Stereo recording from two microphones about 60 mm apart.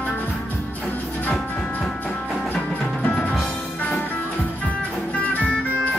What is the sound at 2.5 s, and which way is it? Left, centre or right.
Music, left.